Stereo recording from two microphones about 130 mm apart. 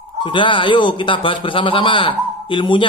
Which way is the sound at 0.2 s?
40° left (ahead or behind).